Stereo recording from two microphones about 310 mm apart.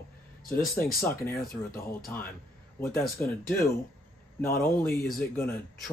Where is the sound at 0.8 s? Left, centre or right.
Left.